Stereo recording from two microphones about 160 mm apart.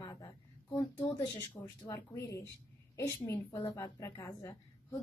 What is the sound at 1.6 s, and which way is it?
A woman's voice, 10° left (ahead or behind).